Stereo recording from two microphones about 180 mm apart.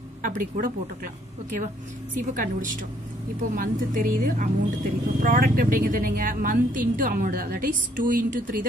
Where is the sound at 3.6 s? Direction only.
50° right (ahead or behind).